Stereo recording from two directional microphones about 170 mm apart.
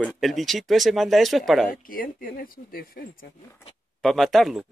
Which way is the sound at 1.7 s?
55° left (ahead or behind).